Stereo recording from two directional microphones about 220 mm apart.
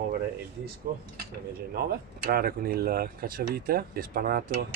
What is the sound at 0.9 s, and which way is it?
Speech, 45° right (ahead or behind).